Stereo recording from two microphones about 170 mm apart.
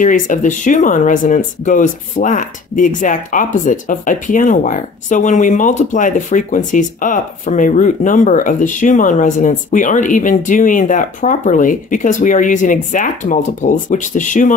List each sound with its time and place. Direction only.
0.0 s speech: 50° left (ahead or behind)